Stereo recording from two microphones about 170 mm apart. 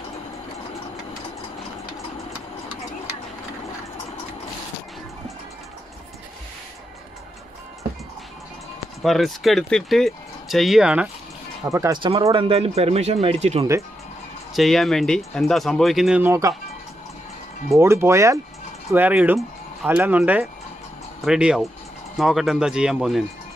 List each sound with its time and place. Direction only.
9.0 s speech: centre (ahead or behind)
11.6 s speech: 20° right (ahead or behind)
12.4 s speech: 35° right (ahead or behind)
14.5 s speech: centre (ahead or behind)
16.2 s speech: 15° right (ahead or behind)
17.7 s speech: 15° right (ahead or behind)